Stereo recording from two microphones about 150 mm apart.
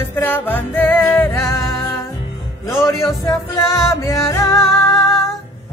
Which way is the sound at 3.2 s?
25° left (ahead or behind).